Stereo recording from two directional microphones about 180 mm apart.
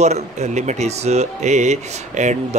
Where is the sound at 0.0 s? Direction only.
40° right (ahead or behind).